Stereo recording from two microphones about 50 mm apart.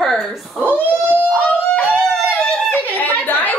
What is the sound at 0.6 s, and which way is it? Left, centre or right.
Speech, right.